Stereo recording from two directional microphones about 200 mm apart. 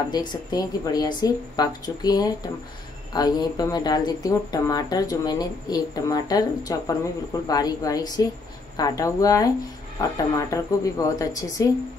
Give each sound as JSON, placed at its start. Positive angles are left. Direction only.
{"t": 0.1, "sound": "speech", "side_deg": 20}